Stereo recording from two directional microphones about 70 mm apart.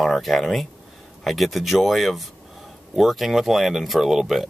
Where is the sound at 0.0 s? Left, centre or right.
Centre.